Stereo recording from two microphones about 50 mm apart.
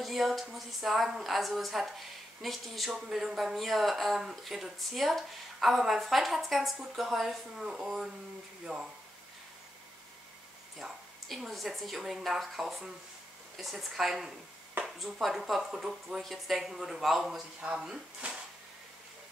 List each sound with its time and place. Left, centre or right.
0.0 s speech: centre
8.7 s speech: centre
10.8 s speech: centre
18.2 s a sound: right